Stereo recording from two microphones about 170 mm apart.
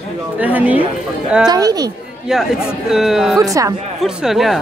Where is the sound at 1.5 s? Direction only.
20° right (ahead or behind).